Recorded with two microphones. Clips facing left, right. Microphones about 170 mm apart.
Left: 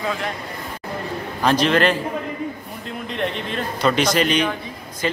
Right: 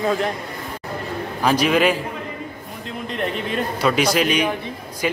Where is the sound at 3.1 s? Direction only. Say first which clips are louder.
Right 1 dB; 5° right (ahead or behind).